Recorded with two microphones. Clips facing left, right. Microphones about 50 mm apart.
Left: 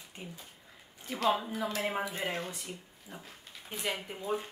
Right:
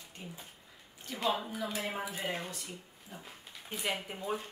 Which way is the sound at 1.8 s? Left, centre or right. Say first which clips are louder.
Left 5 dB; left.